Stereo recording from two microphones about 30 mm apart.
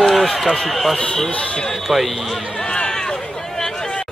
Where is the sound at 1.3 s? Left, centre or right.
Left.